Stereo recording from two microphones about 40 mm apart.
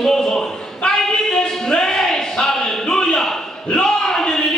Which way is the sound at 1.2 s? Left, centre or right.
Centre.